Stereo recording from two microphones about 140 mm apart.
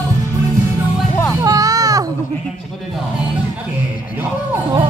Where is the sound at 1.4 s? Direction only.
25° right (ahead or behind).